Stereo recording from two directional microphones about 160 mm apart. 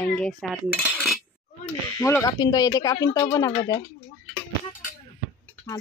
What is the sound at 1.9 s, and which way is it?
Speech, 20° left (ahead or behind).